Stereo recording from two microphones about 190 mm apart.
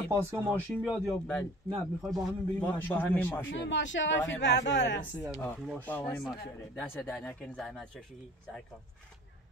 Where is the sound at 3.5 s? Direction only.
75° left (ahead or behind).